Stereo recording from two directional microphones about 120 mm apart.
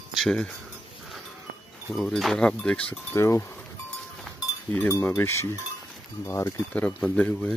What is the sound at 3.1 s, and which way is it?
Speech, 25° left (ahead or behind).